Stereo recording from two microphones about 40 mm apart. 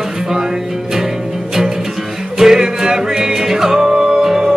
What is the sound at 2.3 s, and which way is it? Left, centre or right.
Music, centre.